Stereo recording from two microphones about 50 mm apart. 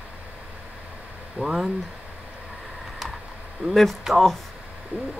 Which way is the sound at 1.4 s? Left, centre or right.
Centre.